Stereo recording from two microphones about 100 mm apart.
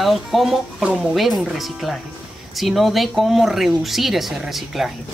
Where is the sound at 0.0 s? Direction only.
Centre (ahead or behind).